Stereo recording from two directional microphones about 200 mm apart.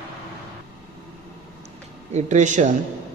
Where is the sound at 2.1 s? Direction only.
40° right (ahead or behind).